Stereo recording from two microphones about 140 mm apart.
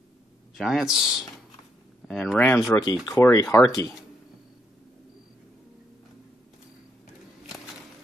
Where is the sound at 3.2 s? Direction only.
20° left (ahead or behind).